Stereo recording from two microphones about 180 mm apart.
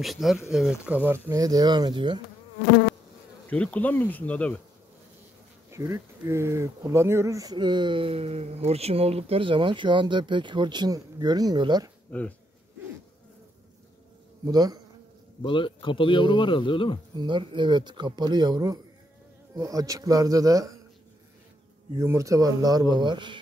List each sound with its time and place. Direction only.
0.0 s speech: centre (ahead or behind); by 2.2 s 25° right (ahead or behind)
3.4 s bee: 5° left (ahead or behind)
5.7 s speech: 15° right (ahead or behind)
12.1 s bee: 10° left (ahead or behind)
14.4 s speech: 20° right (ahead or behind)
15.4 s a man's voice: 30° left (ahead or behind)
17.1 s speech: 25° right (ahead or behind)
21.9 s speech: 15° right (ahead or behind)